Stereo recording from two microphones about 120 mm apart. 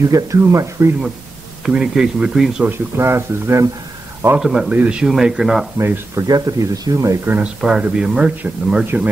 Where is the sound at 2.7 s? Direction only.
20° right (ahead or behind).